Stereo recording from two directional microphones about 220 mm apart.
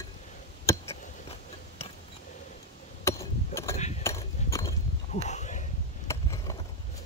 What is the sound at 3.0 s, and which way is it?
Hammer, 15° left (ahead or behind).